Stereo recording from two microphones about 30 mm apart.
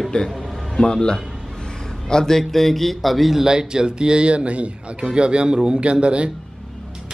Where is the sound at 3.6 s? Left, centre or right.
Right.